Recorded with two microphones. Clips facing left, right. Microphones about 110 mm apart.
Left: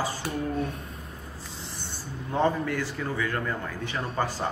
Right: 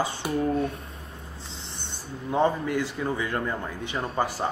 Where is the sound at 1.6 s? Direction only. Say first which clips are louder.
Left 1 dB; 25° right (ahead or behind).